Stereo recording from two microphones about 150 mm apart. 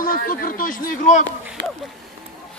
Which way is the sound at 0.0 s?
70° left (ahead or behind).